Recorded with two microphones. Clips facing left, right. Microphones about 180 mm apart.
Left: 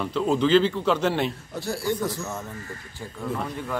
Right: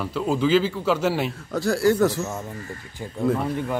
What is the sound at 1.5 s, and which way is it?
Speech, 90° right.